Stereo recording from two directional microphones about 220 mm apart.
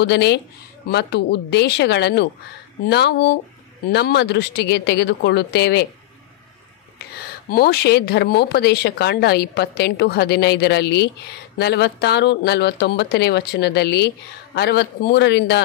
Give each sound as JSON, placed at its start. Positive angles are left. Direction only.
{"t": 0.0, "sound": "speech", "side_deg": 50}
{"t": 7.2, "sound": "speech", "side_deg": 45}